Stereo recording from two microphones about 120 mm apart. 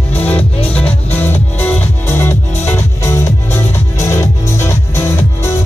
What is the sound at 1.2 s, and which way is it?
Music, 20° left (ahead or behind).